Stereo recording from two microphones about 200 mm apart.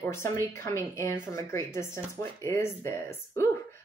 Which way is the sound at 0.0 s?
15° left (ahead or behind).